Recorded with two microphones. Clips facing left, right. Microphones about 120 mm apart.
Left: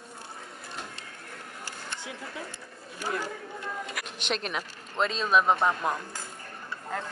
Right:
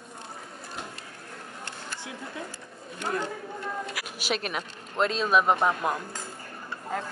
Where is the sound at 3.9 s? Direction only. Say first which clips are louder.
Right 1 dB; 5° right (ahead or behind).